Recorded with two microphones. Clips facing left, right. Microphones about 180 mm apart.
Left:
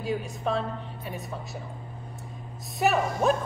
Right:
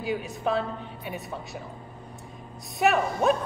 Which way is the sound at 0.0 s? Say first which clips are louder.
Right 1 dB; centre (ahead or behind).